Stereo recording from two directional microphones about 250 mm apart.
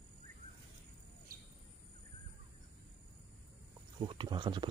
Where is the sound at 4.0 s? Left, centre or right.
Centre.